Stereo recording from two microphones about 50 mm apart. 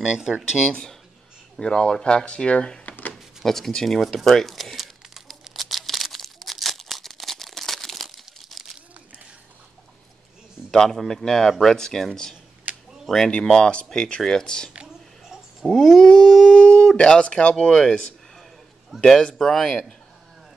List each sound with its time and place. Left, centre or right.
0.0 s speech: centre
1.6 s speech: centre
3.4 s speech: centre
4.0 s crumpling: centre
10.7 s speech: centre
12.7 s a sound: right
13.1 s speech: centre
13.4 s speech: centre